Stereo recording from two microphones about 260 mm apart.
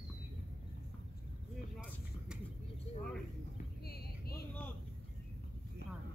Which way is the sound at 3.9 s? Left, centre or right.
Left.